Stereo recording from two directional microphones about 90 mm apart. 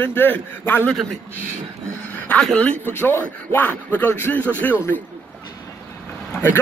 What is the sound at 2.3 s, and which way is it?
A man's voice, 15° left (ahead or behind).